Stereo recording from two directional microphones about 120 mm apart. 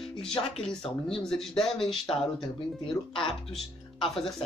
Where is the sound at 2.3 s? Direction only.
45° left (ahead or behind).